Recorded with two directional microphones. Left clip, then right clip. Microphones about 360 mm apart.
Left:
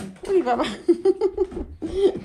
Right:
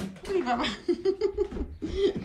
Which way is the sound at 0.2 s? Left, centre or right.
Centre.